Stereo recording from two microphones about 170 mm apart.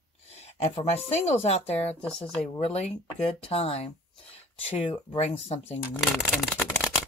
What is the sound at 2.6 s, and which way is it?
Speech, 35° left (ahead or behind).